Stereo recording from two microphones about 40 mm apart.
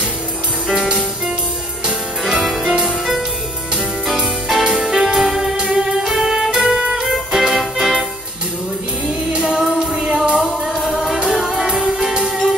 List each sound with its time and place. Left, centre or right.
2.3 s music: centre
4.1 s jingle bell: centre
4.7 s music: centre
9.3 s music: right
10.3 s music: centre